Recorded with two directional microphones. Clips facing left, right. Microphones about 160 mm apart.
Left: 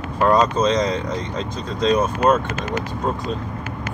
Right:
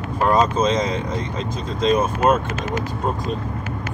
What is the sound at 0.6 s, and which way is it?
Speech, 5° right (ahead or behind).